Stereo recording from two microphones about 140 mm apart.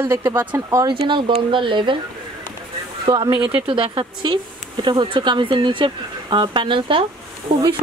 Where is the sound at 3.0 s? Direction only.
30° right (ahead or behind).